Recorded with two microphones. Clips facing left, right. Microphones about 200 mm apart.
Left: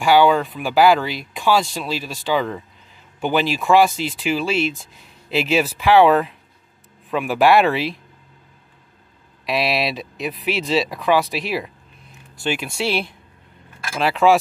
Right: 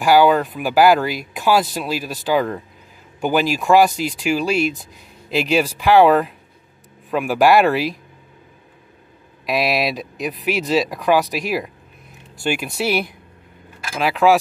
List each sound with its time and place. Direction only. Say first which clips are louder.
0.0 s speech: right 1 dB; 5° right (ahead or behind)
4.4 s speech: right 2 dB; 45° right (ahead or behind)
5.3 s speech: right 1 dB; centre (ahead or behind)
9.5 s speech: right 2 dB; centre (ahead or behind)